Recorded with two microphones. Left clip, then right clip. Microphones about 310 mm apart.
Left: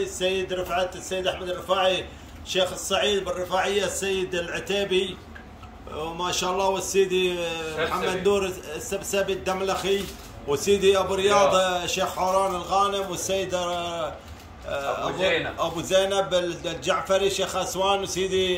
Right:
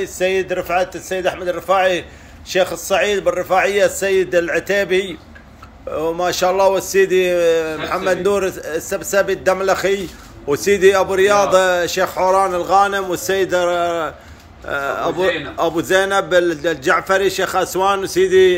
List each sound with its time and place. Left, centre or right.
0.0 s a man's voice: centre
6.1 s a man's voice: centre